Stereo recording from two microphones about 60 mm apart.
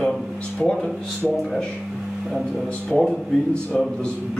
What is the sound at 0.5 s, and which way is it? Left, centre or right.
Speech, centre.